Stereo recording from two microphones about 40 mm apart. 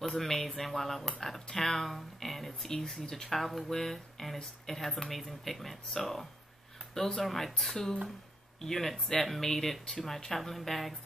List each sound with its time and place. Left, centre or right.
0.0 s speech: centre
3.3 s speech: centre